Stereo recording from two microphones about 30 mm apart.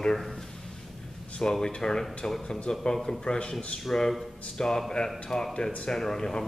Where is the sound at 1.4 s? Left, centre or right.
Left.